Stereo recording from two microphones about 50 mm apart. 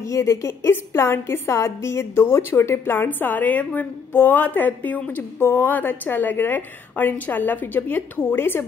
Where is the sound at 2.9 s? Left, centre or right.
Left.